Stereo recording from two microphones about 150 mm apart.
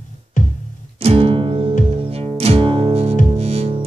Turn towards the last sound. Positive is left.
turn(degrees=-45)  # may be behind; listen again after turning